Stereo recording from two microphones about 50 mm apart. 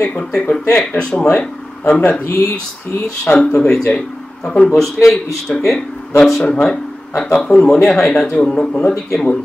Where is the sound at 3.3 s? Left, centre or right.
Left.